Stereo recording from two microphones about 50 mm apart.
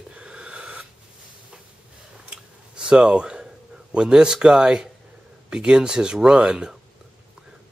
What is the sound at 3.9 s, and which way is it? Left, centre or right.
Speech, centre.